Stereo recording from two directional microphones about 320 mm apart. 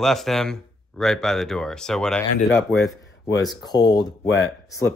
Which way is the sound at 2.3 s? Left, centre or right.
Left.